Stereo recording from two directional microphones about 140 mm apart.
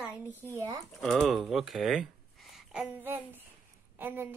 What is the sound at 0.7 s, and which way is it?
A woman's voice, centre (ahead or behind).